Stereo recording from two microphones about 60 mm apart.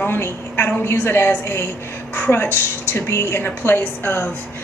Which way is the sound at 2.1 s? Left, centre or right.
Left.